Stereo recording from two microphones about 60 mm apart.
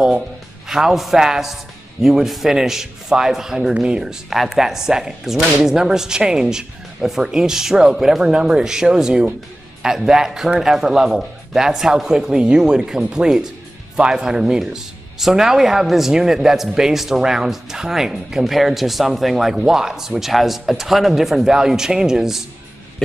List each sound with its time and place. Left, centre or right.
0.7 s speech: centre